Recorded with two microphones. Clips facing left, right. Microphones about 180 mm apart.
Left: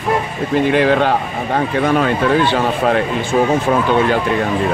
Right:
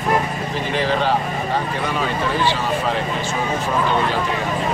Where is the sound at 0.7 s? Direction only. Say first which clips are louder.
Left 5 dB; 60° left (ahead or behind).